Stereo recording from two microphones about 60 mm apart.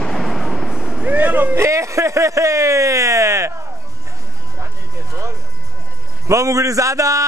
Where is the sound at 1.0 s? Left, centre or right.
Right.